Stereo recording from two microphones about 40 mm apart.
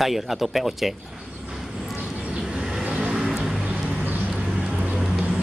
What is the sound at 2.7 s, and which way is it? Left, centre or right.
Vehicle, right.